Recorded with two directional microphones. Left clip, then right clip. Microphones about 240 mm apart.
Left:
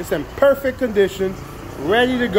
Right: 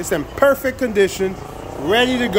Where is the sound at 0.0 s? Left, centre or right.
Centre.